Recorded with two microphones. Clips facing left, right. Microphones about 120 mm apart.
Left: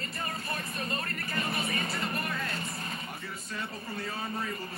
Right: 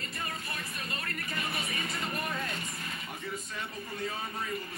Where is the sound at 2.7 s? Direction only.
35° left (ahead or behind).